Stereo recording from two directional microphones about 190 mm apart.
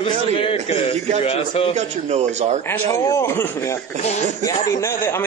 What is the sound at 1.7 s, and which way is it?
Speech, 35° right (ahead or behind).